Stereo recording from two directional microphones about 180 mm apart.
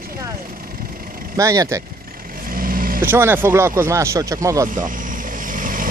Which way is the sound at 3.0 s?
10° right (ahead or behind).